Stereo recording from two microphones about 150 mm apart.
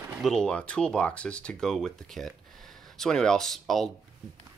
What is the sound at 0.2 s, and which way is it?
Speech, 5° left (ahead or behind).